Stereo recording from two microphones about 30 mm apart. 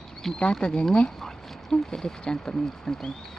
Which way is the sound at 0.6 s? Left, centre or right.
Left.